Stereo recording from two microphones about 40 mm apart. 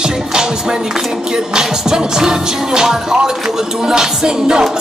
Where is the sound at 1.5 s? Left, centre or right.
Centre.